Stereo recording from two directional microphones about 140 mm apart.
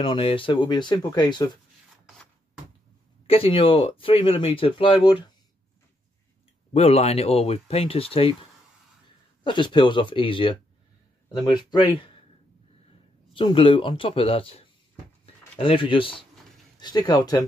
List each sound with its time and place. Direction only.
0.0 s speech: 40° left (ahead or behind)
2.0 s a sound: centre (ahead or behind)
3.3 s speech: 40° left (ahead or behind)
6.7 s speech: 50° left (ahead or behind)
9.4 s speech: 35° left (ahead or behind)
13.3 s speech: 40° left (ahead or behind)